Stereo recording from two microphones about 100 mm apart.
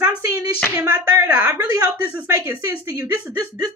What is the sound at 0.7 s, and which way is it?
Speech, 30° right (ahead or behind).